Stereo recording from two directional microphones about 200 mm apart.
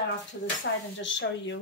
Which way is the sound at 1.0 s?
65° left (ahead or behind).